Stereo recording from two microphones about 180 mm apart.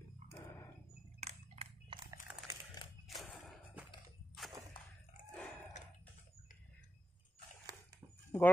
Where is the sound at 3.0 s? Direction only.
Centre (ahead or behind).